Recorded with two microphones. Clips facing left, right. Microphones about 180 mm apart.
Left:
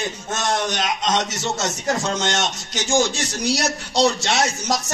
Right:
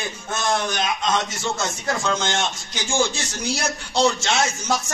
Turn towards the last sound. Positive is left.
turn(degrees=35)  # may be behind; listen again after turning